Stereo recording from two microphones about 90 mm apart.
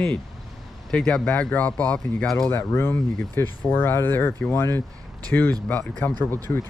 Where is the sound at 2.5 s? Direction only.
30° left (ahead or behind); by 6.1 s 15° left (ahead or behind).